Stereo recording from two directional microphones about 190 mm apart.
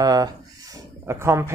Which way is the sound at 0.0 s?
20° right (ahead or behind).